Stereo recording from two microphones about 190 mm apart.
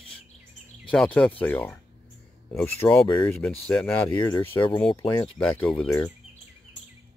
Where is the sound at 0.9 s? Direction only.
5° left (ahead or behind).